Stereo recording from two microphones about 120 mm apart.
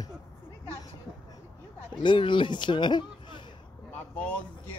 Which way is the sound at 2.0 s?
45° left (ahead or behind).